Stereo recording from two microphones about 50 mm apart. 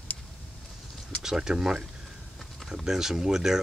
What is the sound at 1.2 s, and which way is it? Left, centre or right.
Speech, centre.